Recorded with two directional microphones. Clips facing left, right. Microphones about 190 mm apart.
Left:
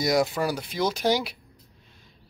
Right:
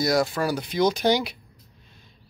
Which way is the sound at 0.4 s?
5° left (ahead or behind).